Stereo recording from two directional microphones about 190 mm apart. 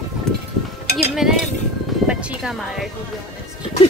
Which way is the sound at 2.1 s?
5° right (ahead or behind).